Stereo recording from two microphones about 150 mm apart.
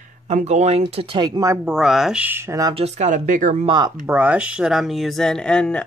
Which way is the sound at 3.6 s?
30° right (ahead or behind).